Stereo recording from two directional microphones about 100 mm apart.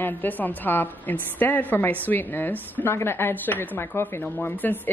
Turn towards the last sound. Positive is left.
turn(degrees=20)  # may be behind; listen again after turning